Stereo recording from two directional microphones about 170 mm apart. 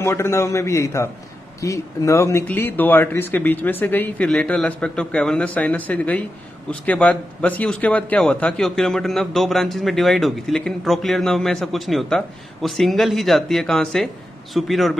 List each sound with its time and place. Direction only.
0.0 s speech: 15° left (ahead or behind); by 15.0 s centre (ahead or behind)